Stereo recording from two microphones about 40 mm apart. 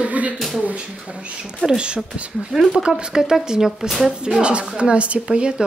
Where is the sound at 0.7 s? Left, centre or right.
Right.